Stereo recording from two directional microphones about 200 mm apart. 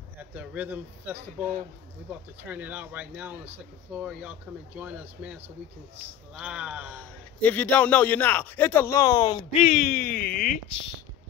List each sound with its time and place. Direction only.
0.2 s speech: 10° right (ahead or behind)
7.0 s a man's voice: 5° left (ahead or behind)
9.5 s speech: 35° left (ahead or behind)